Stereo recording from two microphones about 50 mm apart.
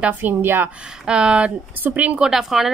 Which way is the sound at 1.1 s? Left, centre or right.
Centre.